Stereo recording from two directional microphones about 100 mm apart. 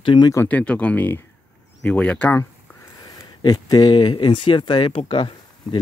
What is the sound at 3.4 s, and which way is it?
Speech, 40° left (ahead or behind).